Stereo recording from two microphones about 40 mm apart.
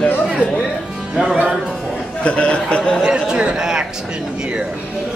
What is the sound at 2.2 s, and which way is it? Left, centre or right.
Speech, left.